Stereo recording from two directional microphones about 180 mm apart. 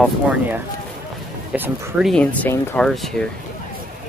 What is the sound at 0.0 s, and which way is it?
Speech, 5° right (ahead or behind).